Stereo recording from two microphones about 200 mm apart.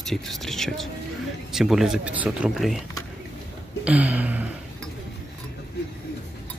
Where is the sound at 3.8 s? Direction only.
5° right (ahead or behind).